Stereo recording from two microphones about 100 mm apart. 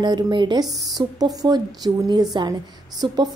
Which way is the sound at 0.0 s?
50° right (ahead or behind).